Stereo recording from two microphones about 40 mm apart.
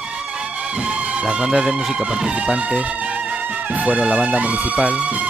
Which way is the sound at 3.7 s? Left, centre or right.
Right.